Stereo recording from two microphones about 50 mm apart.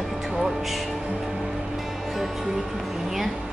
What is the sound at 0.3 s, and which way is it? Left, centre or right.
Music, centre.